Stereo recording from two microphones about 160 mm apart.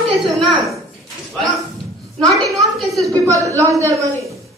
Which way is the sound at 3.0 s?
20° right (ahead or behind).